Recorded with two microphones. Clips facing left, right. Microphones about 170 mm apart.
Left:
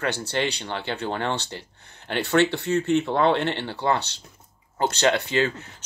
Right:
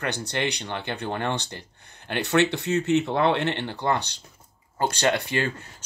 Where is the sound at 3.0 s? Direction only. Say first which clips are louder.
Left 1 dB; 60° left (ahead or behind).